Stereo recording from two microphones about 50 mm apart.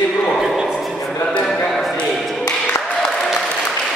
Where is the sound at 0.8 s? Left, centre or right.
Centre.